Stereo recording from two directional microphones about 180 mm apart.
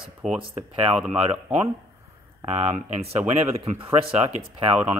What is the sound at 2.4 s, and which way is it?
Speech, 40° right (ahead or behind).